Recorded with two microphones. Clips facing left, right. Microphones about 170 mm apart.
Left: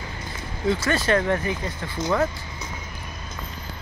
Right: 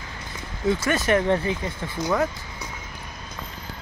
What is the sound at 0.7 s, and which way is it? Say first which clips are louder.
Speech: right 1 dB; 20° right (ahead or behind).